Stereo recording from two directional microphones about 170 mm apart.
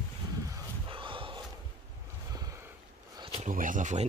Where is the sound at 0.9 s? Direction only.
30° right (ahead or behind).